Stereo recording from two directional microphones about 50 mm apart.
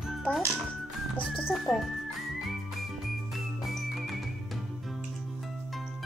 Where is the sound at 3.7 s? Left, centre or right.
Centre.